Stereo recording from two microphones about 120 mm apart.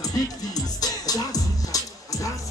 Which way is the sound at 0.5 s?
30° left (ahead or behind).